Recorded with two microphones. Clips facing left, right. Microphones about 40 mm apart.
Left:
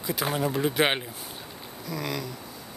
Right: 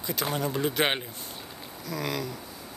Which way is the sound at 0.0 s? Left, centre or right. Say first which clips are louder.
Left 2 dB; centre.